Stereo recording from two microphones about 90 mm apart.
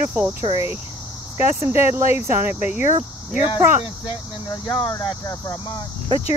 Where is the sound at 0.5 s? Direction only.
90° left.